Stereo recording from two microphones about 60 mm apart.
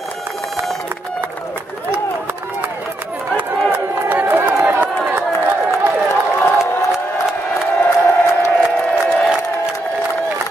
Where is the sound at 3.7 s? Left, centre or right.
Right.